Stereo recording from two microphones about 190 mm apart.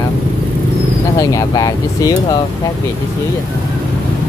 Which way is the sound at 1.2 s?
15° left (ahead or behind).